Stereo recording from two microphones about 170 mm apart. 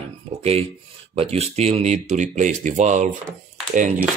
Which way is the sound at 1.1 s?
35° right (ahead or behind).